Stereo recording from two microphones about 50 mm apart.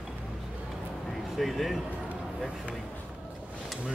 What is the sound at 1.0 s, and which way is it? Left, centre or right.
Vehicle, centre.